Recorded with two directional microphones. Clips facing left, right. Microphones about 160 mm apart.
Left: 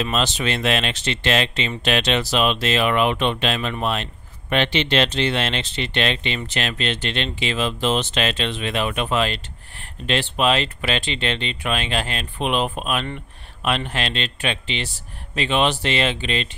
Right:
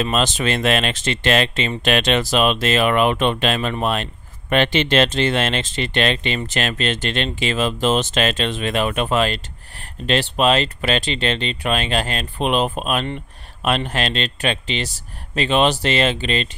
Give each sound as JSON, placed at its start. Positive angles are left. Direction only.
{"t": 0.0, "sound": "speech", "side_deg": -45}